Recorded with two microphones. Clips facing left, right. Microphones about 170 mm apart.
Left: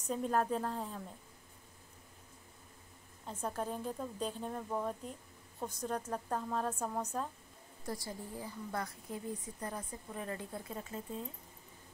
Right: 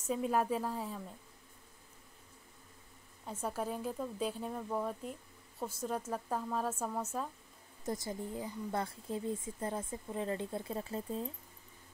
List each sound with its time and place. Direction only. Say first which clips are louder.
0.1 s a woman's voice: right 1 dB; 10° right (ahead or behind)
3.4 s speech: right 1 dB; 10° right (ahead or behind)
7.8 s speech: right 4 dB; 20° right (ahead or behind)